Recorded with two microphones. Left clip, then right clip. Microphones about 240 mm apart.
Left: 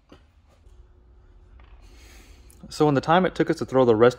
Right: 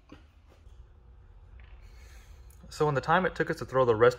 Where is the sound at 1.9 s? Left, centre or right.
Left.